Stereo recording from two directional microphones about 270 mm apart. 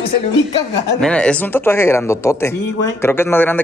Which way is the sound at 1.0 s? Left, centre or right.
Centre.